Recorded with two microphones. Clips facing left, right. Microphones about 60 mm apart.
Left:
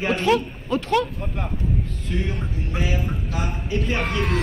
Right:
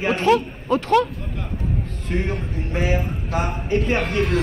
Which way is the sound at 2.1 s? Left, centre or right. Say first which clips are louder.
Right 4 dB; right.